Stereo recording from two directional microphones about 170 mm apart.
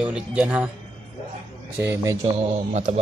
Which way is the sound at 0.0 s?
10° right (ahead or behind).